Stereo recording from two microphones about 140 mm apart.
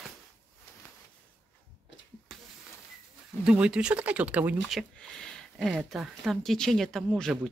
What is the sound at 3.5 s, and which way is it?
Speech, 5° right (ahead or behind).